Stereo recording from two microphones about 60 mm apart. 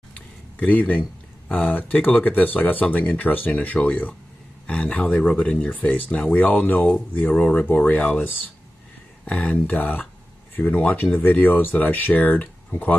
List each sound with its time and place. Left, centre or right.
0.1 s a sound: left
1.5 s speech: left
9.2 s speech: left